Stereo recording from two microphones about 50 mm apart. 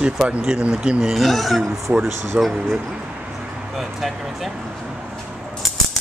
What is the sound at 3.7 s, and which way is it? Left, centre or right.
Speech, centre.